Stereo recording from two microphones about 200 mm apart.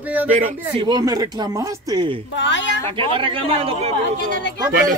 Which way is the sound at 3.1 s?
25° right (ahead or behind).